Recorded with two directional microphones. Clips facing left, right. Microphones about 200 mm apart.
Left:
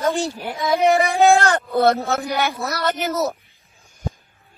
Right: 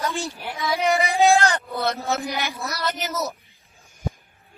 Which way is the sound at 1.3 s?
55° left (ahead or behind).